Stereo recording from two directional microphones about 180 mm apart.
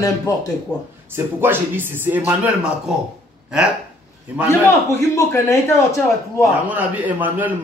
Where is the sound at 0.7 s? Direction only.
20° left (ahead or behind).